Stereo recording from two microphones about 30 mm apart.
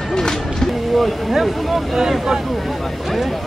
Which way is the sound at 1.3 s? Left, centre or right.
Centre.